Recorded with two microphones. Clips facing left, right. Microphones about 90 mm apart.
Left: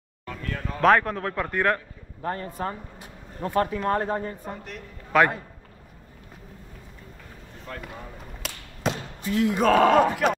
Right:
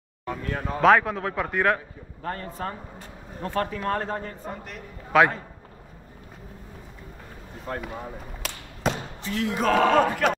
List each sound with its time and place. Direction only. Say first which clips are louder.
0.2 s speech: right 3 dB; 25° right (ahead or behind)
0.7 s speech: right 1 dB; 5° right (ahead or behind)
2.2 s a man's voice: left 2 dB; 15° left (ahead or behind)
4.5 s a man's voice: even; centre (ahead or behind)
7.7 s speech: right 6 dB; 30° right (ahead or behind)
8.3 s a sound: right 2 dB; centre (ahead or behind)
9.2 s a man's voice: left 4 dB; 15° left (ahead or behind); by 10.3 s centre (ahead or behind)